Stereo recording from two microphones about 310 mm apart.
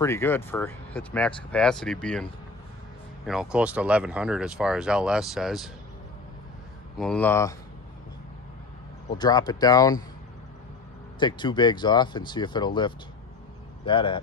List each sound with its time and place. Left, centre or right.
0.0 s speech: centre
3.3 s speech: centre
7.0 s speech: centre
9.2 s speech: centre
11.1 s speech: centre